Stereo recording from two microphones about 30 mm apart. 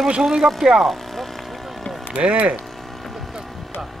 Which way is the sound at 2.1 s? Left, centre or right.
Right.